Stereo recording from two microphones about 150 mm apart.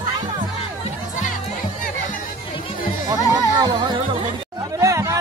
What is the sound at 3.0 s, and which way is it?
Music, 25° right (ahead or behind).